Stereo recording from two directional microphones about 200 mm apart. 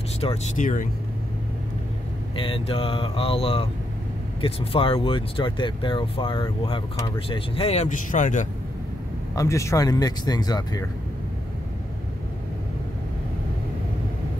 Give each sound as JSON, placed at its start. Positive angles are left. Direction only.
{"t": 0.2, "sound": "speech", "side_deg": 35}
{"t": 2.3, "sound": "speech", "side_deg": 25}
{"t": 9.3, "sound": "speech", "side_deg": 15}